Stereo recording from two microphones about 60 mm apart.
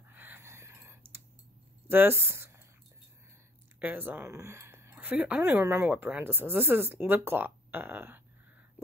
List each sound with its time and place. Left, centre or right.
0.1 s a sound: right
0.4 s whispering: right
1.9 s speech: right
3.8 s speech: right
4.3 s a sound: right
4.9 s speech: right
5.6 s speech: right
5.9 s speech: right
8.8 s a sound: right